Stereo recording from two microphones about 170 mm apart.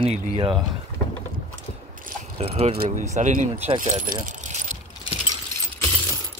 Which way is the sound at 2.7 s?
45° right (ahead or behind).